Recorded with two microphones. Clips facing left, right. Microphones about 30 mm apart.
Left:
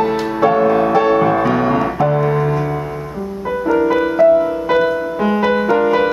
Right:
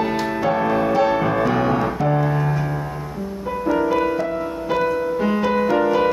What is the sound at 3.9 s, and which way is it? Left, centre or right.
Music, centre.